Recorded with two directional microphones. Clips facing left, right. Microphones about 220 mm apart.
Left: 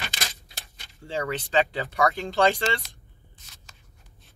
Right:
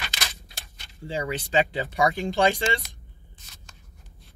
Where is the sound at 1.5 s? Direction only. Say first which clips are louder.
Even; 15° right (ahead or behind).